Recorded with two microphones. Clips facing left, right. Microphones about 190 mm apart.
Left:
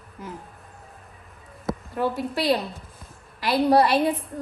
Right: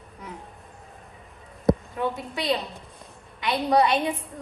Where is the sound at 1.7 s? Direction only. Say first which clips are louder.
Right 3 dB; 5° left (ahead or behind).